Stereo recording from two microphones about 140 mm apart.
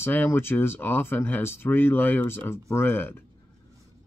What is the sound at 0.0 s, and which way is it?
Speech, 15° left (ahead or behind).